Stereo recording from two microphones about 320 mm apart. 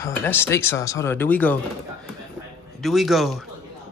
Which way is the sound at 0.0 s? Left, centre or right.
Centre.